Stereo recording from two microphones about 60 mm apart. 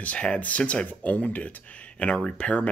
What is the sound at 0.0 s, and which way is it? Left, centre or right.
Speech, centre.